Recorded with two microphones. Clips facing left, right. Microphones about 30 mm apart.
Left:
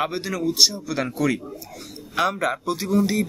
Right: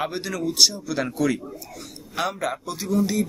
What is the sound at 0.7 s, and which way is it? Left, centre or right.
Speech, left.